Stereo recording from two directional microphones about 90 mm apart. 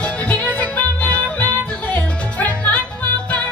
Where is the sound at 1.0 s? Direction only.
15° left (ahead or behind).